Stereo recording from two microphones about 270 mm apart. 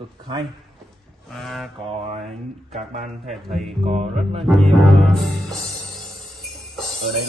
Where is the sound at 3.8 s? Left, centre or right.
Right.